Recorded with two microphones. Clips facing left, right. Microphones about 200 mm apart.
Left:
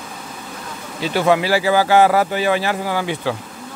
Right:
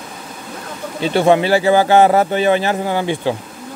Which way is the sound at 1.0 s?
25° right (ahead or behind).